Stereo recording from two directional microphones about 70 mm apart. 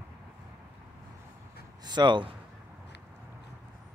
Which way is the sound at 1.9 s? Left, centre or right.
Right.